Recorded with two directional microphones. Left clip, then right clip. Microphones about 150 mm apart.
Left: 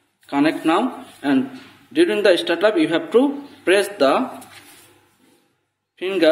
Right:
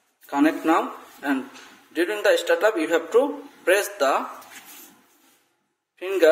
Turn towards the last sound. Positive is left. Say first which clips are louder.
# left 1 dB
turn(degrees=-65)  # may be behind; listen again after turning